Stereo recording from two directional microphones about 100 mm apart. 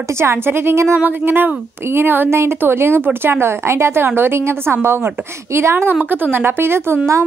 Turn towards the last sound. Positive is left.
turn(degrees=-25)  # may be behind; listen again after turning